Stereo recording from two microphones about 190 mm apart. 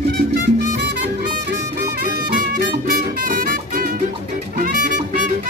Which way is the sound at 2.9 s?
45° right (ahead or behind).